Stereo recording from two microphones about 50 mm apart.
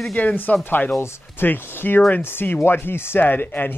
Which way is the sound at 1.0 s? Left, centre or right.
Left.